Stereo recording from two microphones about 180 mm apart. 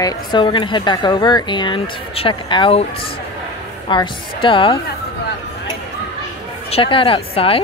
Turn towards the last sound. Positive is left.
turn(degrees=30)  # may be behind; listen again after turning